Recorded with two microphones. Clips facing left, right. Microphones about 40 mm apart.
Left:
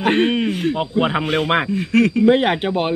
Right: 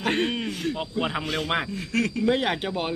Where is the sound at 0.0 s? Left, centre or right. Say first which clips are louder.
Left 8 dB; left.